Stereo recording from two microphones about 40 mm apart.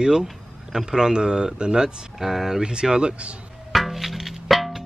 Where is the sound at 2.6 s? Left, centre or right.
Right.